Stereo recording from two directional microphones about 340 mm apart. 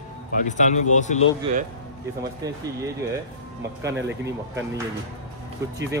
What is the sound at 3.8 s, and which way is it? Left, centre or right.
Speech, centre.